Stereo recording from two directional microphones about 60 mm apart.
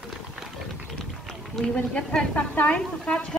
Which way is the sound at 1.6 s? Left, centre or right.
Centre.